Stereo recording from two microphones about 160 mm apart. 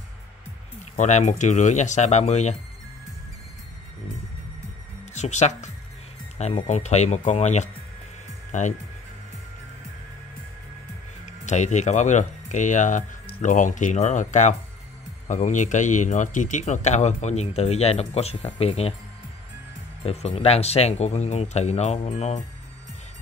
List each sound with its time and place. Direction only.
0.9 s a man's voice: 45° left (ahead or behind)
5.1 s a man's voice: 45° left (ahead or behind)
11.2 s a man's voice: 45° left (ahead or behind)
20.0 s a man's voice: 40° left (ahead or behind)